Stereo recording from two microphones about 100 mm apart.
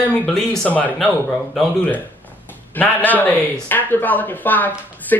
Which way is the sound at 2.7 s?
15° left (ahead or behind).